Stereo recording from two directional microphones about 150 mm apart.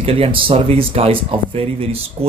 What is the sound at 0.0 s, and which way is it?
Speech, 40° right (ahead or behind).